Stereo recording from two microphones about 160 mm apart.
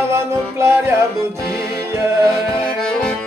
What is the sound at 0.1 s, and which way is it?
Music, 15° right (ahead or behind).